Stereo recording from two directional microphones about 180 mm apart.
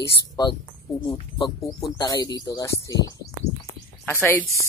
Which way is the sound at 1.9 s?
20° left (ahead or behind).